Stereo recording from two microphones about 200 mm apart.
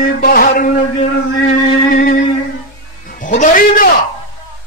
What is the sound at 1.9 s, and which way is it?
Music, 45° left (ahead or behind).